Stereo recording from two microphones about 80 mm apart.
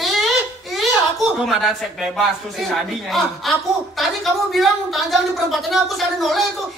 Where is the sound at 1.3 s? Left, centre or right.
Centre.